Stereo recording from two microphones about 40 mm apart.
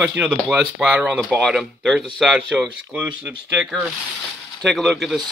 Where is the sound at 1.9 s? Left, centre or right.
Centre.